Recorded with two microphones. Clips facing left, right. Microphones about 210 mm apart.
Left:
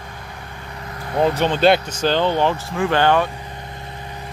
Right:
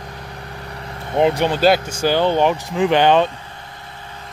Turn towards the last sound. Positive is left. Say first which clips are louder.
# right 3 dB
turn(degrees=-20)  # may be behind; listen again after turning